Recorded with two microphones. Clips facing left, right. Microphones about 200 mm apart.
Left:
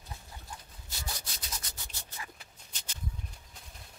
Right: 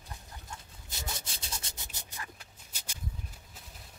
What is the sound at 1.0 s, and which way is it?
Rub, 25° right (ahead or behind).